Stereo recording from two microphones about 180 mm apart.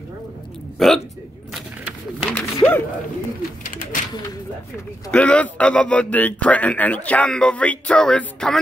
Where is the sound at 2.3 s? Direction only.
10° left (ahead or behind).